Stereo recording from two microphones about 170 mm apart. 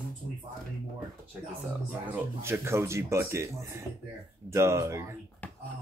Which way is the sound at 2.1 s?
15° right (ahead or behind).